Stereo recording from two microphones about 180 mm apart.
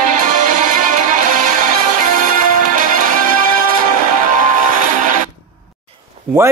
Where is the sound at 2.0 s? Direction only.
50° right (ahead or behind).